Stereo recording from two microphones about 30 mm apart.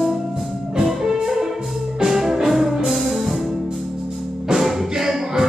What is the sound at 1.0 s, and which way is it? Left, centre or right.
Music, centre.